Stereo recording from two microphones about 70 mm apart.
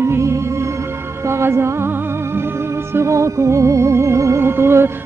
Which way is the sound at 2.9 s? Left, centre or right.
Right.